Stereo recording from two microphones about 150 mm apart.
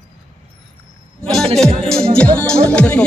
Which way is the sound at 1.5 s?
5° left (ahead or behind).